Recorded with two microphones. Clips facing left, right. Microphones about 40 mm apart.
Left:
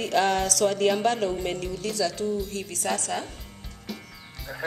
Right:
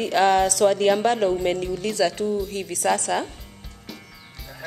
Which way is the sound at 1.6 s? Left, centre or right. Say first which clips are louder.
Right 4 dB; right.